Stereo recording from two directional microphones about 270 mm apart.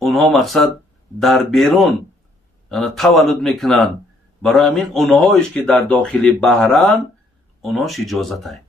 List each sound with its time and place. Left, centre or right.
0.0 s a man's voice: centre